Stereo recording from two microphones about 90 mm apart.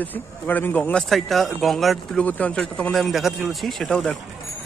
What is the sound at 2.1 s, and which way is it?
Speech, 15° left (ahead or behind).